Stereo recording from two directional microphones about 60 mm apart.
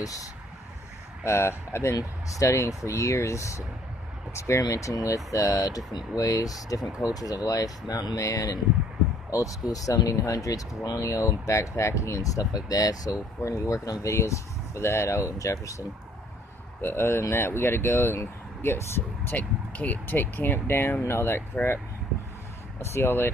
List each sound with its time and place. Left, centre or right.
0.0 s speech: left
1.2 s speech: left
2.0 s speech: left
6.1 s speech: left
16.8 s speech: left
19.3 s speech: left
22.8 s speech: left